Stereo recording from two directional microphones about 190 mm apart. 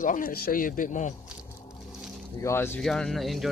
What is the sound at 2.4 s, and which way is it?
Speech, 10° left (ahead or behind).